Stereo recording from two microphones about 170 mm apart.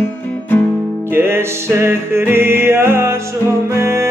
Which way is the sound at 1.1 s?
15° right (ahead or behind).